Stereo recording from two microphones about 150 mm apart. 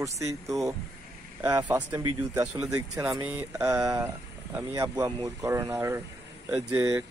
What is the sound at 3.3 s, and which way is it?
Speech, 20° right (ahead or behind).